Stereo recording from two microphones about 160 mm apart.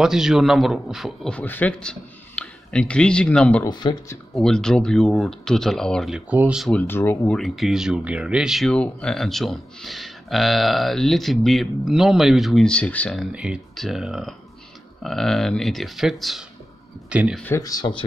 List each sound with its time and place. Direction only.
0.0 s speech: 5° right (ahead or behind)
3.6 s speech: 25° left (ahead or behind)
4.3 s speech: 5° left (ahead or behind)
6.7 s speech: 15° left (ahead or behind)
7.3 s speech: centre (ahead or behind)
13.3 s speech: 5° right (ahead or behind)
17.6 s speech: 25° left (ahead or behind)